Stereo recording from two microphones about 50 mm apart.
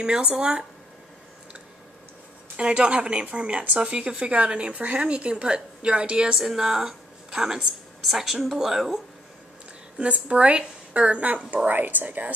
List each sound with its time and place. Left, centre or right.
0.0 s speech: centre
2.5 s a woman's voice: right
6.3 s a woman's voice: centre
9.9 s a woman's voice: right